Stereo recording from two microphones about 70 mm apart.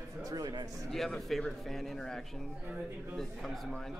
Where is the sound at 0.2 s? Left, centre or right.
Right.